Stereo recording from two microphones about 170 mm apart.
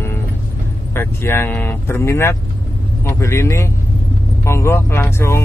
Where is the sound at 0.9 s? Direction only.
15° left (ahead or behind).